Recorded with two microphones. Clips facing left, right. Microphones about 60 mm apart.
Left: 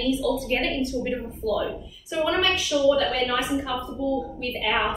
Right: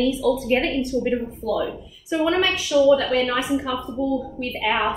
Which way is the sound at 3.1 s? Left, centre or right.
Right.